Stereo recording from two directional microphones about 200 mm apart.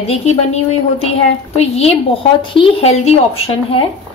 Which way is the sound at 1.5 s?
30° left (ahead or behind).